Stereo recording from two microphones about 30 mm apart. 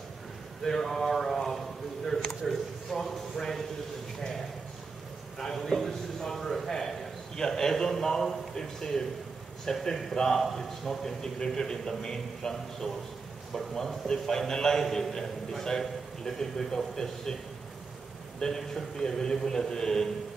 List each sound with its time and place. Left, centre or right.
0.7 s a sound: centre
3.3 s a man's voice: centre
5.4 s a man's voice: centre
7.3 s a man's voice: centre
11.3 s a man's voice: centre
18.4 s a man's voice: centre